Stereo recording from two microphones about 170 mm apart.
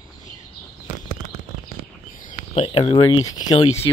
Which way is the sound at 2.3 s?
40° left (ahead or behind).